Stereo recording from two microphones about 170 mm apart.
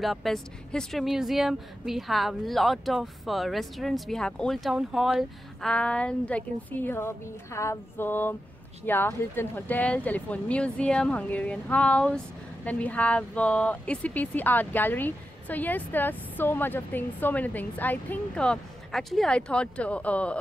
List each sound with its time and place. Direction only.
0.0 s speech: centre (ahead or behind)